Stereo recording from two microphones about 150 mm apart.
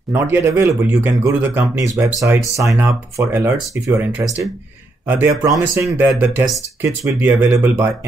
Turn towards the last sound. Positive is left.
turn(degrees=-15)  # may be behind; listen again after turning